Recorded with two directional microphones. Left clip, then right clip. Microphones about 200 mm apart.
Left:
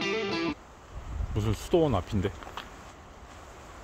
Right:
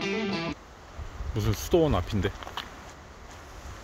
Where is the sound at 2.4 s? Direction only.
15° right (ahead or behind).